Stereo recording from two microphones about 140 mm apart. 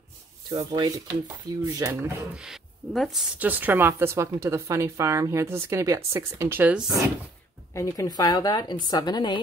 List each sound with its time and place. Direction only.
0.5 s speech: 30° right (ahead or behind)
2.3 s speech: 5° right (ahead or behind)
7.7 s a woman's voice: 25° left (ahead or behind)